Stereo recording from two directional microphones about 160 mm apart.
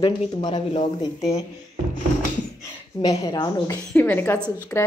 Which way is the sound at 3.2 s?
25° left (ahead or behind).